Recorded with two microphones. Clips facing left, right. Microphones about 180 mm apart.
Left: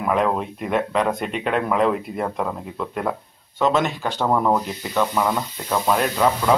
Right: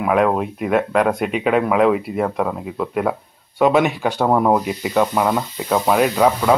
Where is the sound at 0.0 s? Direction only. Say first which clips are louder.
Right 4 dB; 5° right (ahead or behind).